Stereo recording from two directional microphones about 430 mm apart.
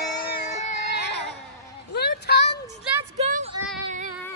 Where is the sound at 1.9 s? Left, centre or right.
Left.